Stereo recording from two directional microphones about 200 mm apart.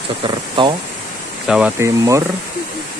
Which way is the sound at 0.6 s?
25° right (ahead or behind).